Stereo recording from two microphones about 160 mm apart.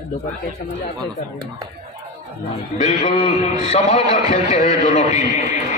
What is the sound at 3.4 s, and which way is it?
A man's voice, 45° left (ahead or behind).